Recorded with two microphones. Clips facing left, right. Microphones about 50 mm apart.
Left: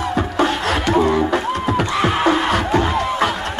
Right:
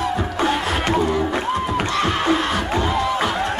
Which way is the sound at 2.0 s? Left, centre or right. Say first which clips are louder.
Left 4 dB; centre.